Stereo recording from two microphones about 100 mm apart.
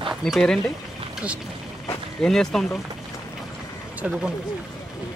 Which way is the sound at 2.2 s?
5° left (ahead or behind).